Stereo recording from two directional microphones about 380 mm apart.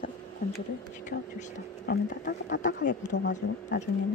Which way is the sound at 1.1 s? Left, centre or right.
Centre.